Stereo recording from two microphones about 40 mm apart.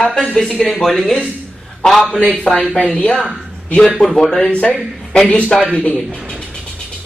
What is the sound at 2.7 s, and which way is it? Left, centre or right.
Speech, left.